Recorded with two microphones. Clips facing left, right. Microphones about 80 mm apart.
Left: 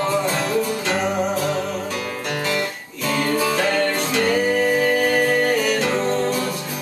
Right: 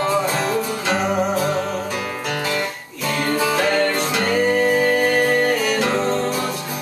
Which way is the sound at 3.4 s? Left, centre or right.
Centre.